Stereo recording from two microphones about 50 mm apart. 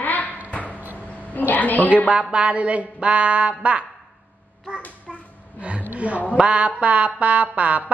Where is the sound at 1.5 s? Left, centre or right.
Left.